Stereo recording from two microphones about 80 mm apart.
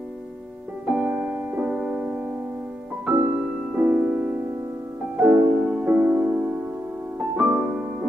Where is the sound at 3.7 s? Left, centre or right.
Centre.